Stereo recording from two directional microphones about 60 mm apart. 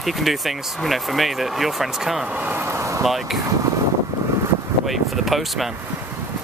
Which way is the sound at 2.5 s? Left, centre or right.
Right.